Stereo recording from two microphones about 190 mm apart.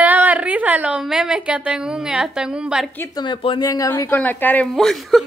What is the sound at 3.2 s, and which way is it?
Speech, 25° left (ahead or behind).